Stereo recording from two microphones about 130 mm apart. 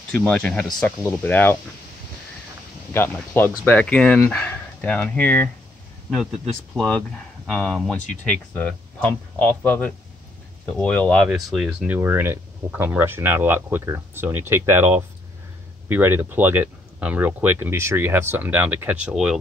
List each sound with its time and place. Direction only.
0.1 s speech: 10° left (ahead or behind)
2.9 s speech: 15° left (ahead or behind)
6.7 s speech: 5° left (ahead or behind)
11.2 s speech: 5° right (ahead or behind)